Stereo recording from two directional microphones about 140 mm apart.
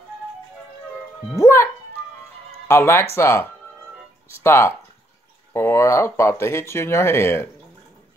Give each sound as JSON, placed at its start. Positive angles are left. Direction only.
{"t": 1.3, "sound": "speech", "side_deg": 20}
{"t": 2.7, "sound": "speech", "side_deg": 15}